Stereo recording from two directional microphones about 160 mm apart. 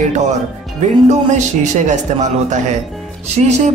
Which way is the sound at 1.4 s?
50° right (ahead or behind).